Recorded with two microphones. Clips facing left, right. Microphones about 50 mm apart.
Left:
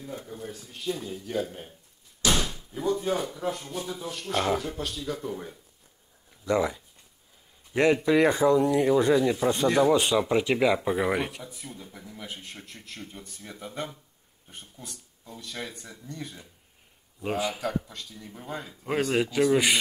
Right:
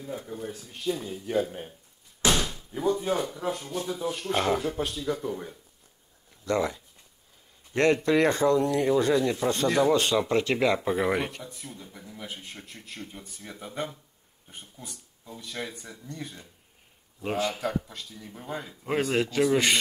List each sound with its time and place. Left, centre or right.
0.2 s a man's voice: centre
2.3 s door: centre
2.7 s speech: centre